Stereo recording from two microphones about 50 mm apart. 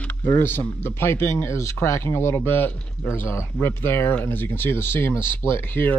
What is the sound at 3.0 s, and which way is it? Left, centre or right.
Speech, left.